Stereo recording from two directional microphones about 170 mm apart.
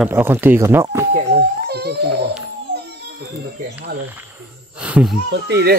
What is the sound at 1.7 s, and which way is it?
Speech, 70° right (ahead or behind).